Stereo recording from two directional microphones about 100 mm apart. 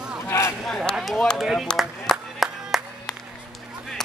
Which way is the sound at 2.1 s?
Centre (ahead or behind).